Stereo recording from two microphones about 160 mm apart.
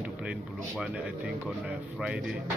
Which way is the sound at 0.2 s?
5° right (ahead or behind).